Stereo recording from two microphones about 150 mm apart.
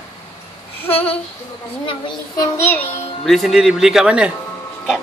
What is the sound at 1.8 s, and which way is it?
Speech, 35° left (ahead or behind).